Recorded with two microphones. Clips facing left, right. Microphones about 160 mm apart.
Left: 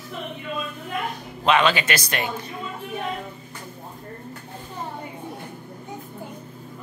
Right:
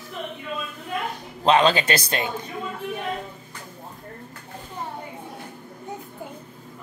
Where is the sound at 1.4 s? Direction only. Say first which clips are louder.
Right 2 dB; 35° right (ahead or behind).